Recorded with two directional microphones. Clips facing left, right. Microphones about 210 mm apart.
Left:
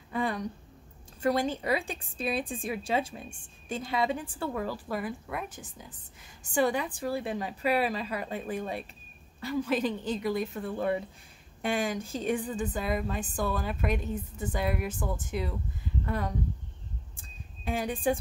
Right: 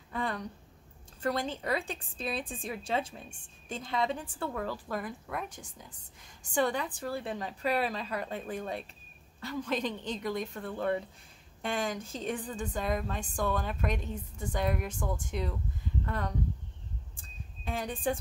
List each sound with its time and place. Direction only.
0.1 s a woman's voice: 10° left (ahead or behind)
17.6 s a woman's voice: 10° left (ahead or behind)